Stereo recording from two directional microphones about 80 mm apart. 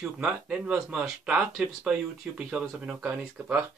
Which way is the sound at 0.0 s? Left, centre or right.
Centre.